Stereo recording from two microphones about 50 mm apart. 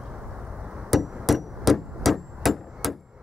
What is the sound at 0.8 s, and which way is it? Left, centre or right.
Hammer, centre.